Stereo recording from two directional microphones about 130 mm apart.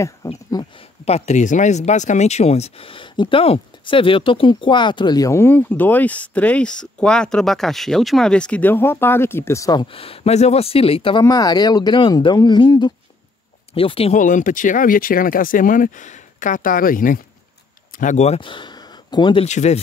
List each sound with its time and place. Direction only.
0.2 s speech: 20° left (ahead or behind)
0.7 s speech: 50° left (ahead or behind); by 9.8 s 25° left (ahead or behind)
9.8 s speech: 45° left (ahead or behind)
11.2 s speech: 30° left (ahead or behind); by 14.1 s 45° left (ahead or behind)
14.1 s speech: 80° left
17.9 s speech: 70° left (ahead or behind)
18.4 s a sound: 40° left (ahead or behind)
19.4 s speech: 60° left (ahead or behind)